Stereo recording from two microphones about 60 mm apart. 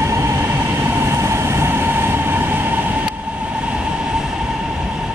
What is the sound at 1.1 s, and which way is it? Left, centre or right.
Train, right.